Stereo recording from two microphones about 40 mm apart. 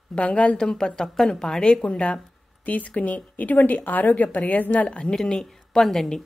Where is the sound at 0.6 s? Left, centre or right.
Centre.